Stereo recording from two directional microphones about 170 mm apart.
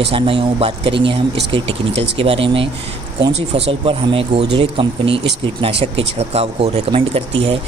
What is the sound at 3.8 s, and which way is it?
Speech, 30° right (ahead or behind).